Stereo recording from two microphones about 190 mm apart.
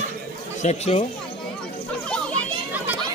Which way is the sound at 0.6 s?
35° left (ahead or behind).